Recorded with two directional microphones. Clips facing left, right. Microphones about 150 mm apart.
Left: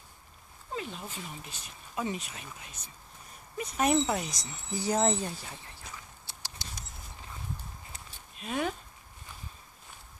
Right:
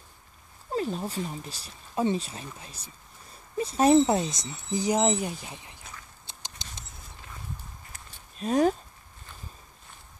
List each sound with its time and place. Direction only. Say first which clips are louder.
0.7 s speech: right 9 dB; 35° right (ahead or behind); by 5.8 s 15° right (ahead or behind)
6.2 s patter: even; 20° right (ahead or behind)
8.4 s speech: right 9 dB; 40° right (ahead or behind)